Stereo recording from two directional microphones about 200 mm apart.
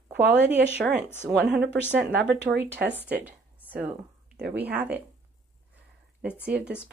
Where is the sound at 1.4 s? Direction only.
60° right (ahead or behind).